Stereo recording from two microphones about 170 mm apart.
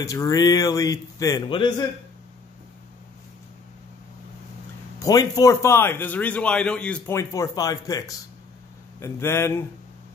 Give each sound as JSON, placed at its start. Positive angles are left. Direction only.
{"t": 0.0, "sound": "a man's voice", "side_deg": 20}
{"t": 4.9, "sound": "a man's voice", "side_deg": 20}